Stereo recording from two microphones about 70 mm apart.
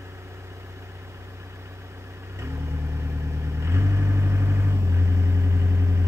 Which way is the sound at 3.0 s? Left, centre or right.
Right.